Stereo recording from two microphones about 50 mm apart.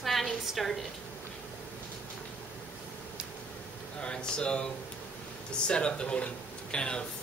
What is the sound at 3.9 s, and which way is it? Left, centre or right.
Speech, centre.